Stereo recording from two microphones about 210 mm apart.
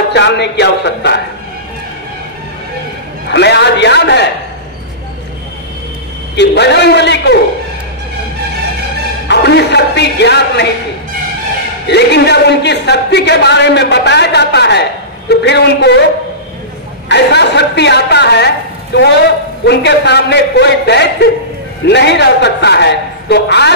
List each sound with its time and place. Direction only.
0.1 s music: 55° left (ahead or behind)
3.3 s music: 55° left (ahead or behind)
6.3 s a man's voice: 55° left (ahead or behind)
9.3 s speech: 55° left (ahead or behind)
11.9 s a man's voice: 55° left (ahead or behind)
17.1 s a man's voice: 55° left (ahead or behind)
18.9 s music: 55° left (ahead or behind)
19.6 s a man's voice: 55° left (ahead or behind)